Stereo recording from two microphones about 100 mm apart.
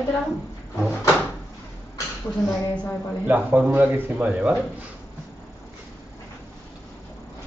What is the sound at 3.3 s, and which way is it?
A man's voice, 15° right (ahead or behind).